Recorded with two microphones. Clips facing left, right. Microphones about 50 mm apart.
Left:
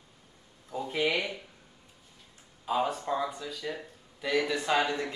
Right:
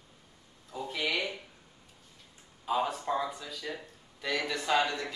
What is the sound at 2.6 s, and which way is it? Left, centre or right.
Speech, centre.